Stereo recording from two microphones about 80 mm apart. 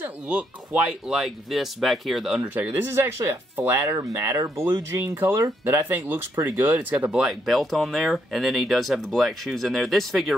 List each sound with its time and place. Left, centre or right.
0.0 s speech: centre
2.4 s speech: right
4.0 s speech: right; by 10.3 s centre